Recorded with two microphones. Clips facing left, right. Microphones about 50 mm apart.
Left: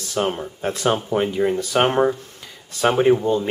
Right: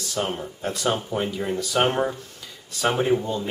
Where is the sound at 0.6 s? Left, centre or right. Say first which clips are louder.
Left 4 dB; left.